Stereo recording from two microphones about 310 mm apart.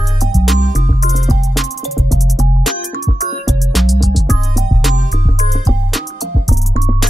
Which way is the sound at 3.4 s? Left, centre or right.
Centre.